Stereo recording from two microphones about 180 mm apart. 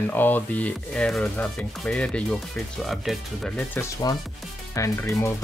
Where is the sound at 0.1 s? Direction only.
10° left (ahead or behind).